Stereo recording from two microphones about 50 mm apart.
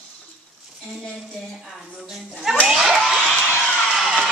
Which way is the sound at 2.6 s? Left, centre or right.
Centre.